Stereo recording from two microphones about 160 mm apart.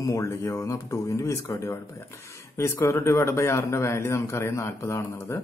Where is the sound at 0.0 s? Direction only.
20° left (ahead or behind).